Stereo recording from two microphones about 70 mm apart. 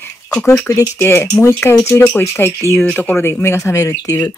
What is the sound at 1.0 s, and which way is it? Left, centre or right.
Speech, left.